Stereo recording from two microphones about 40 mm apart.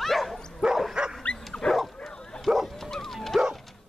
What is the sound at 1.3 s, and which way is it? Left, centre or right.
Dog, left.